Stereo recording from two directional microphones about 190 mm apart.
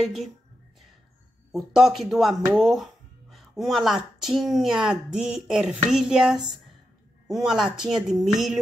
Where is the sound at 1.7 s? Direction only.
Centre (ahead or behind).